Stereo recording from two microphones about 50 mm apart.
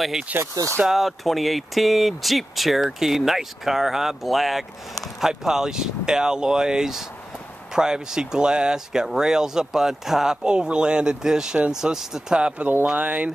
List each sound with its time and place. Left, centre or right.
0.3 s speech: right
0.8 s speech: centre
12.6 s speech: right